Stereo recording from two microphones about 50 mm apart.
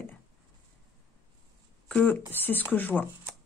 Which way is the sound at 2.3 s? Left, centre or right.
Left.